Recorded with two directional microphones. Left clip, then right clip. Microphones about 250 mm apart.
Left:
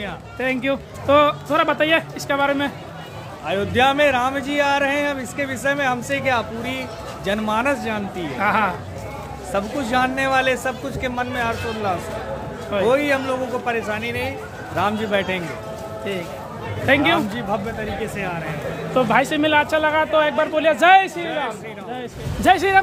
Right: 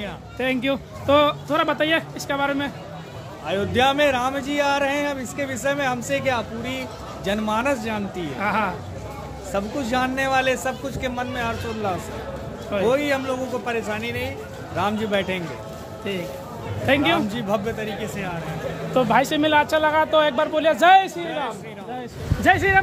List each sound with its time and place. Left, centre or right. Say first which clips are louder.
0.4 s speech: left 1 dB; centre
16.8 s speech: left 3 dB; centre
17.5 s speech: right 2 dB; right
18.9 s speech: left 1 dB; centre
22.4 s speech: left 2 dB; centre